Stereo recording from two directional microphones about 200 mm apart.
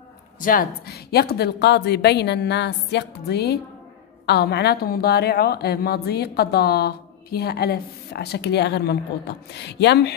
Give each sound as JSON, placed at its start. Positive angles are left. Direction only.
{"t": 0.4, "sound": "a woman's voice", "side_deg": 45}